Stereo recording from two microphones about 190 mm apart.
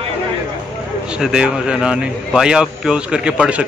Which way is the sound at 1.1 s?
5° right (ahead or behind).